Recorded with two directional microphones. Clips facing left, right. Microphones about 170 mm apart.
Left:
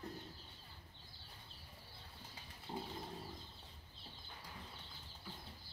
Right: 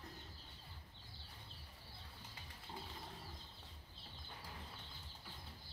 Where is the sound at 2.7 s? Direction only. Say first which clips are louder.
Left 7 dB; 35° left (ahead or behind).